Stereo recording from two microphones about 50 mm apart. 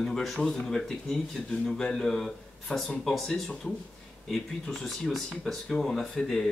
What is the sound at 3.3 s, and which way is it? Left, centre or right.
Speech, centre.